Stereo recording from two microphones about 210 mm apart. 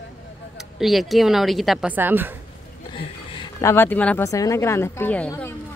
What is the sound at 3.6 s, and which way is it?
A woman's voice, 10° left (ahead or behind).